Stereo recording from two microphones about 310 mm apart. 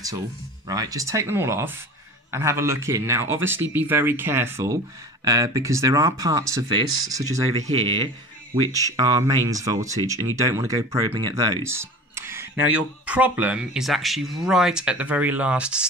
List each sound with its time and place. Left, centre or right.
0.7 s speech: centre